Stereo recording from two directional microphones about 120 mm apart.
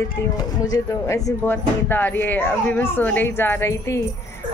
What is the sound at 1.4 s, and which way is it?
A woman's voice, 15° left (ahead or behind).